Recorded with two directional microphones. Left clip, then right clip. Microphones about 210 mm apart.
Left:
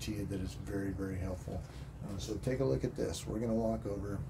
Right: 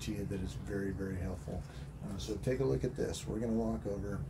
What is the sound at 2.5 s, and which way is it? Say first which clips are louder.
Speech: even; 10° left (ahead or behind).